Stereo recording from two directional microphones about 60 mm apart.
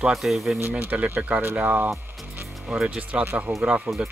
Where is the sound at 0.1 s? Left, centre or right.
Centre.